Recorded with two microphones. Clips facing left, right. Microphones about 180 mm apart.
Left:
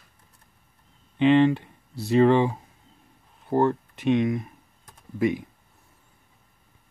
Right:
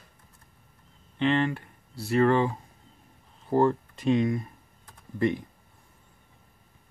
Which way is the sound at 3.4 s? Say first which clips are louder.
Left 1 dB; centre (ahead or behind).